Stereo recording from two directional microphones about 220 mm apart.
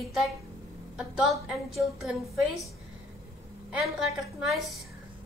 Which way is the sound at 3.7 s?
Centre (ahead or behind).